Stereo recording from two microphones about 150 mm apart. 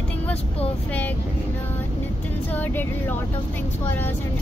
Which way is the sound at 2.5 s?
10° left (ahead or behind).